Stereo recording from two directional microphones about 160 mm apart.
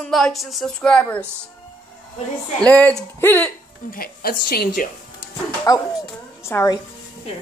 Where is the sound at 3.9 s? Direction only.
65° left (ahead or behind).